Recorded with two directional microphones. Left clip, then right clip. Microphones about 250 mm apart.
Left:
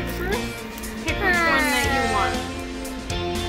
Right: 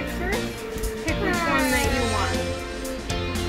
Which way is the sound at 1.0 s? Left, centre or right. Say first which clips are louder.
Left 5 dB; centre.